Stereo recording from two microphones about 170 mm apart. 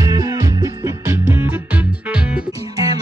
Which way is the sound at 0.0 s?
20° right (ahead or behind).